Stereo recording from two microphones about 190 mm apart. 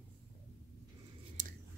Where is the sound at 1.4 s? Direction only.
40° right (ahead or behind).